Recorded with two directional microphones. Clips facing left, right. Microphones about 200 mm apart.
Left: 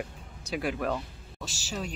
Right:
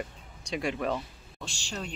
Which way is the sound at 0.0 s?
5° left (ahead or behind).